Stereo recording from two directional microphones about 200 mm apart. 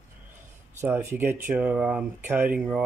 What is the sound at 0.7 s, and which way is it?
Speech, 10° right (ahead or behind).